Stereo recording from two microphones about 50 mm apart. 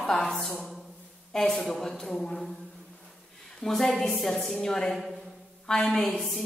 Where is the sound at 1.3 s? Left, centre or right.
Centre.